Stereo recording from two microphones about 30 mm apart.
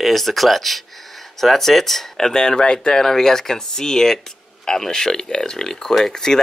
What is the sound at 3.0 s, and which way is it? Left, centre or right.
Speech, centre.